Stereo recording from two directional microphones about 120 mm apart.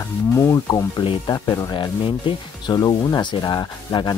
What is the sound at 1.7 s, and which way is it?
Speech, 45° left (ahead or behind).